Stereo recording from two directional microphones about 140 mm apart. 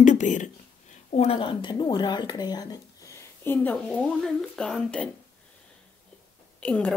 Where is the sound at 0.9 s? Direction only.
55° left (ahead or behind).